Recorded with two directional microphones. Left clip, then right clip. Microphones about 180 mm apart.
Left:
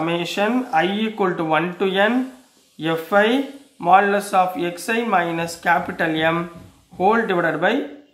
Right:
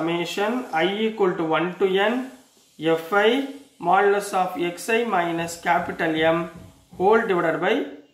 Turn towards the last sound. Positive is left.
turn(degrees=30)  # may be behind; listen again after turning